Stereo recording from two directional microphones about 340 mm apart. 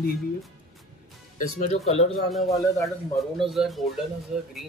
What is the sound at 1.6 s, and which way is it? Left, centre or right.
A man's voice, centre.